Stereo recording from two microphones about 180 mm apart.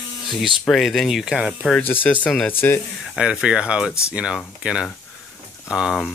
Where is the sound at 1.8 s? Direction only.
10° left (ahead or behind).